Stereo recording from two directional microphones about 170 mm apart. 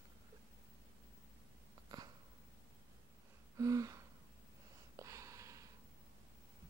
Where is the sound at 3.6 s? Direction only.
20° right (ahead or behind).